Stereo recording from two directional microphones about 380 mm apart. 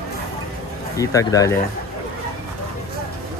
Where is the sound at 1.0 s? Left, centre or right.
Centre.